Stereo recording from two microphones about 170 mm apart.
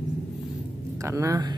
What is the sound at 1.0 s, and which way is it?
Speech, 20° right (ahead or behind).